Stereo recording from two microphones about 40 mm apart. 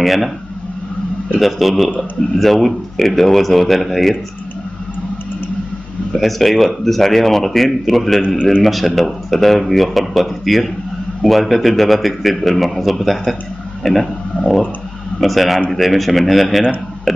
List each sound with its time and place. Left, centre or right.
0.0 s a man's voice: centre
1.4 s a man's voice: centre
6.1 s a man's voice: centre
14.3 s a sound: left
15.1 s a man's voice: centre